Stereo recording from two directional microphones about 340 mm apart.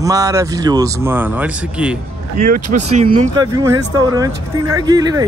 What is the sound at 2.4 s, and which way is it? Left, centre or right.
Speech, right.